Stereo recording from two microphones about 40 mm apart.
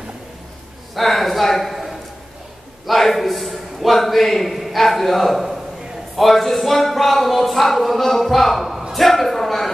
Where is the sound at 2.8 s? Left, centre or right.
Centre.